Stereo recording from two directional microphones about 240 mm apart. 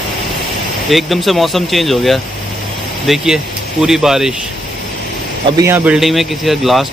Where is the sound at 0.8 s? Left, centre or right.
Centre.